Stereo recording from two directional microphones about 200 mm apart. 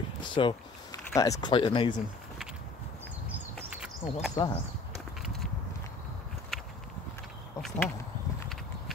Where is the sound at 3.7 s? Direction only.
5° right (ahead or behind).